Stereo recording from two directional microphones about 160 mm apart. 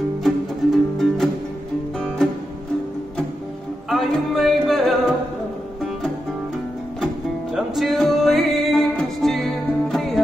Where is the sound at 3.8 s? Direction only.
Centre (ahead or behind).